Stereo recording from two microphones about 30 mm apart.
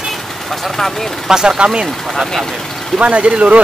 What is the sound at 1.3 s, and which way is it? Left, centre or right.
Speech, right.